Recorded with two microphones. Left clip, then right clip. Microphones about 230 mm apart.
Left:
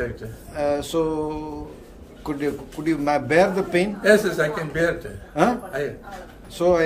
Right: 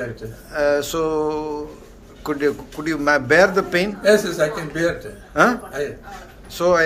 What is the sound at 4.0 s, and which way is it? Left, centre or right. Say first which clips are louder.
Speech: right 1 dB; left.